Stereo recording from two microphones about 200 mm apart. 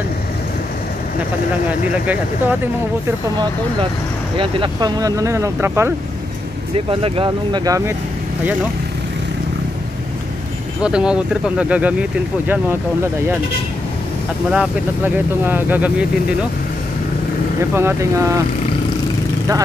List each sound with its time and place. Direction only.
4.4 s speech: 25° right (ahead or behind)
6.9 s speech: 25° right (ahead or behind)
10.8 s speech: 5° right (ahead or behind)
14.5 s speech: 5° right (ahead or behind)
17.6 s speech: 15° right (ahead or behind)